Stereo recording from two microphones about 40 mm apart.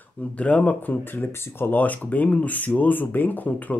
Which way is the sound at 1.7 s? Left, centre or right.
Left.